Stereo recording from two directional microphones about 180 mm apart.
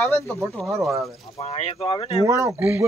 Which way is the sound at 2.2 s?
15° right (ahead or behind).